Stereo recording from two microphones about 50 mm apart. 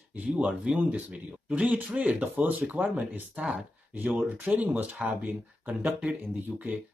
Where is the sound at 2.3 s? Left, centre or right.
Right.